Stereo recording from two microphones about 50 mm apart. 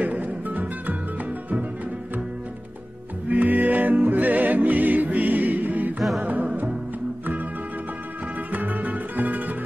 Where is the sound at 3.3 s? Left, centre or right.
Right.